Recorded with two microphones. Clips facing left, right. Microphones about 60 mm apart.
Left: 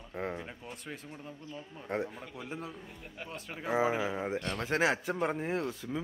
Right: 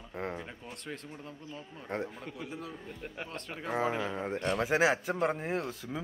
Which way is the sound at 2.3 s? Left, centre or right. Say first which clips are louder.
Left 3 dB; left.